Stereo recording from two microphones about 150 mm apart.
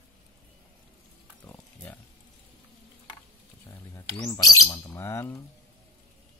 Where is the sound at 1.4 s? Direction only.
10° left (ahead or behind).